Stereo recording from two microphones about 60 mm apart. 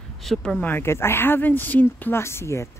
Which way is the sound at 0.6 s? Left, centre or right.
Left.